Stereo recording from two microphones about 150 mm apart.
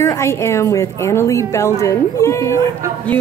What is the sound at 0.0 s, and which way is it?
A woman's voice, 20° left (ahead or behind).